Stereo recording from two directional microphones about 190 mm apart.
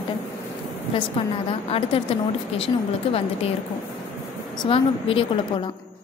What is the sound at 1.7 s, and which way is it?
A woman's voice, 30° left (ahead or behind).